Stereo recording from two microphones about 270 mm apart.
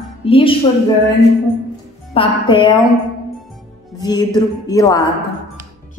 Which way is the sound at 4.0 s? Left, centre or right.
Centre.